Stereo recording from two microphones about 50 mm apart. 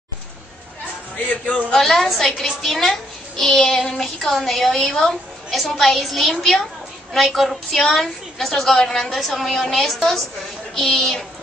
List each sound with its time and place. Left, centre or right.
1.1 s speech: left
1.8 s a woman's voice: centre